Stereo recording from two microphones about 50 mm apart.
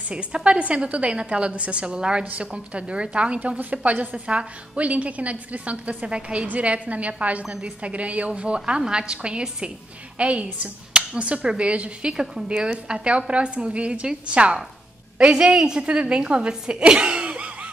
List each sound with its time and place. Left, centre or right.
0.1 s a woman's voice: right
12.1 s a woman's voice: centre